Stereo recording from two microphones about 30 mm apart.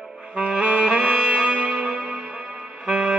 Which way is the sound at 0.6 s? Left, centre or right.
Right.